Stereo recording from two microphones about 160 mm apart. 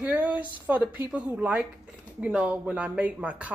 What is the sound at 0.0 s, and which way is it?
Speech, 10° right (ahead or behind).